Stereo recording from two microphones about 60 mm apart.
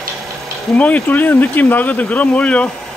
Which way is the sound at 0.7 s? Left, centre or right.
Left.